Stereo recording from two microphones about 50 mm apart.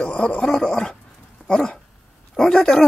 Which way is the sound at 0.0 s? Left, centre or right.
Centre.